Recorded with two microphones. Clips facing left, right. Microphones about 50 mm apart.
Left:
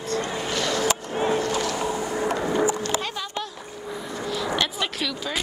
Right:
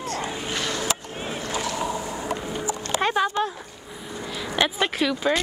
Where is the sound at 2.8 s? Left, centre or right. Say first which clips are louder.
Right 5 dB; right.